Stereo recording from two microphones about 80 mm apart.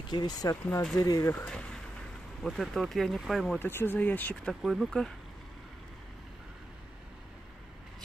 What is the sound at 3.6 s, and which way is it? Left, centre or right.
Speech, left.